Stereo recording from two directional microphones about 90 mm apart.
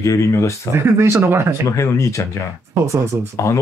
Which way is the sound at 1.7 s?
35° left (ahead or behind).